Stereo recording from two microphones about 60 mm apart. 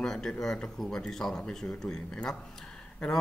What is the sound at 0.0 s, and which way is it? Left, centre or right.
Speech, centre.